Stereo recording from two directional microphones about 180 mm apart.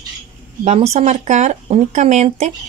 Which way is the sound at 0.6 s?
35° right (ahead or behind).